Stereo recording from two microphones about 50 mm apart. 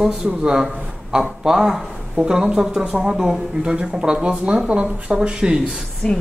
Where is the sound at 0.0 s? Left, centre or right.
Centre.